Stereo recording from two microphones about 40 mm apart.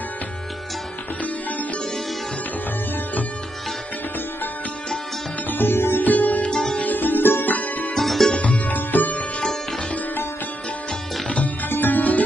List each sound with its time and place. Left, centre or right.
5.5 s music: left
6.0 s sitar: left
6.8 s music: left
7.5 s music: left
7.9 s music: centre
8.6 s music: left
11.2 s music: left
11.7 s music: left